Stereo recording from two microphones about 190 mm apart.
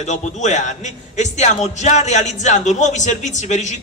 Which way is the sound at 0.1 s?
40° left (ahead or behind).